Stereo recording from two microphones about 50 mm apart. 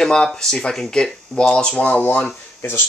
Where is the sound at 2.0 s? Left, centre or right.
Left.